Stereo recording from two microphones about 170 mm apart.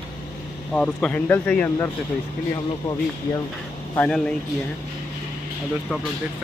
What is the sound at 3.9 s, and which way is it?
Speech, 5° left (ahead or behind).